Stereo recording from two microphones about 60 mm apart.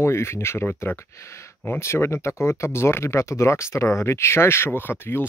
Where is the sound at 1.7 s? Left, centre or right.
Left.